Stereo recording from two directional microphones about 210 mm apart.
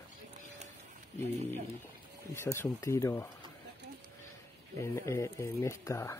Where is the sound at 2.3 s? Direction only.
10° left (ahead or behind).